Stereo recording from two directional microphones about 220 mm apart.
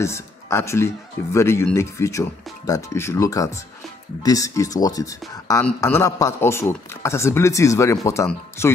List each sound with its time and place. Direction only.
0.0 s a man's voice: 10° left (ahead or behind)